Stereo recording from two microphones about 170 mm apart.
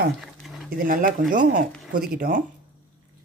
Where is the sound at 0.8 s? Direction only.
55° right (ahead or behind).